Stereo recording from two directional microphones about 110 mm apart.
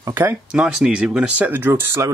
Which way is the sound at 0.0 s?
20° right (ahead or behind).